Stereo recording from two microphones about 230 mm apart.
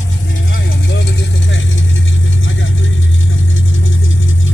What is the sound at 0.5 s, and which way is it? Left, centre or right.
Vehicle, left.